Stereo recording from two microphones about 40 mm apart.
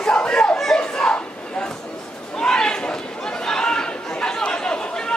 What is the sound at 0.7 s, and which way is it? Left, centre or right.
Crowd, centre.